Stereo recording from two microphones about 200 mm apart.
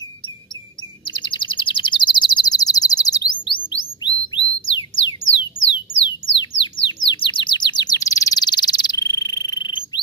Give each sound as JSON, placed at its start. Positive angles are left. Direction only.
{"t": 1.2, "sound": "bird", "side_deg": 25}
{"t": 5.4, "sound": "a sound", "side_deg": 25}
{"t": 6.9, "sound": "bird", "side_deg": 25}